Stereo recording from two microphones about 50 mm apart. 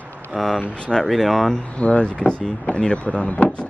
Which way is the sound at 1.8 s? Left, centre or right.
Left.